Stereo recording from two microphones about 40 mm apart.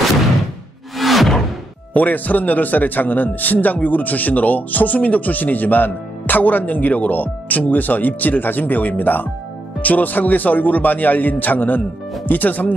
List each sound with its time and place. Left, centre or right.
0.9 s music: centre
2.0 s a man's voice: left